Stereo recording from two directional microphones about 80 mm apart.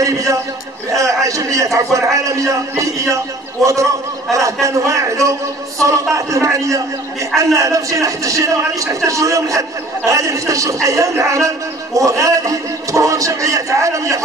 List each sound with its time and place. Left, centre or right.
0.0 s a sound: right
0.9 s a man's voice: right
4.3 s a man's voice: right